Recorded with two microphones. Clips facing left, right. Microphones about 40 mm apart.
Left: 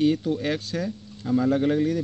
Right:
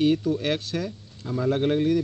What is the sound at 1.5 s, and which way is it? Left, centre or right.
Speech, right.